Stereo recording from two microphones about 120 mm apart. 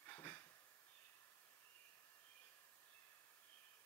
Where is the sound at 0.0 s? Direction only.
20° left (ahead or behind).